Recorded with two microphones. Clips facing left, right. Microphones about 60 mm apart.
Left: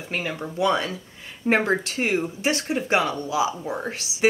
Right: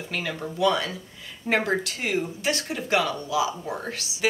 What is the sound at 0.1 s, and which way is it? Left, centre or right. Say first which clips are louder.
Speech: left 3 dB; left.